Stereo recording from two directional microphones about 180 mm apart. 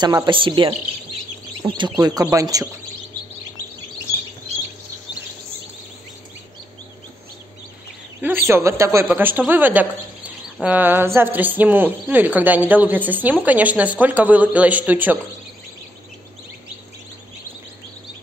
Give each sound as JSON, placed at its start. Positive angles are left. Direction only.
{"t": 0.0, "sound": "speech", "side_deg": -25}
{"t": 1.6, "sound": "speech", "side_deg": -15}
{"t": 8.2, "sound": "speech", "side_deg": -10}